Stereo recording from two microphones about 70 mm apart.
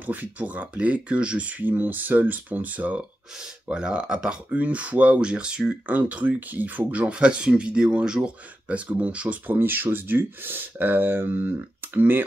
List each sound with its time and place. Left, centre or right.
0.0 s speech: right